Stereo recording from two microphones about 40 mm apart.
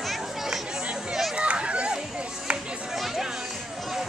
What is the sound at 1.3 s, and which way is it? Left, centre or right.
Children playing, right.